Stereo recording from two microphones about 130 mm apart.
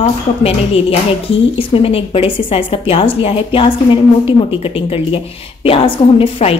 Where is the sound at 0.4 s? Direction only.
50° left (ahead or behind).